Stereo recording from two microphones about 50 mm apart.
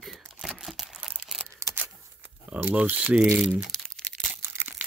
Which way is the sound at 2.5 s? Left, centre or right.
Right.